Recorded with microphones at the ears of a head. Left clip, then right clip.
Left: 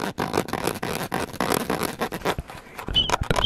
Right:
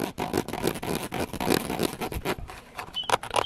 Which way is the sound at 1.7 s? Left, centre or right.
Left.